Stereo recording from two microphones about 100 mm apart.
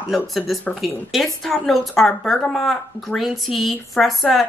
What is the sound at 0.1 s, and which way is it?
Speech, centre (ahead or behind).